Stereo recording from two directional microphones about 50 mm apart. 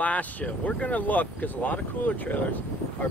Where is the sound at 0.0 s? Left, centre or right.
Left.